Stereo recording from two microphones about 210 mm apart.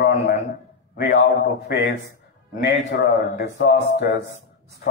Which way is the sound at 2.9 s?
50° left (ahead or behind).